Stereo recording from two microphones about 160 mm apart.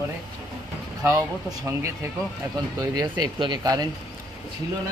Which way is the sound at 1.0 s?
20° right (ahead or behind).